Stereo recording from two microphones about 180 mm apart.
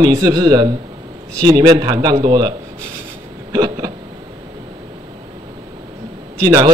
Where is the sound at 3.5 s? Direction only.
20° right (ahead or behind).